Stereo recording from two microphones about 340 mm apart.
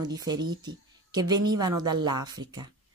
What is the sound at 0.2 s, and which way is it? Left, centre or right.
Speech, centre.